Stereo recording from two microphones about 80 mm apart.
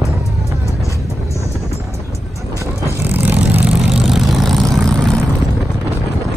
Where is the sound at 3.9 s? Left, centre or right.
Centre.